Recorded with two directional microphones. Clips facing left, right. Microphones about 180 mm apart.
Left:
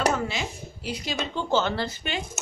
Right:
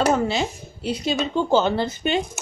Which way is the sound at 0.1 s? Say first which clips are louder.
Right 7 dB; 30° right (ahead or behind).